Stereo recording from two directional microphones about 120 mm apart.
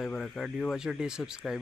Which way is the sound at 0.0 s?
5° left (ahead or behind).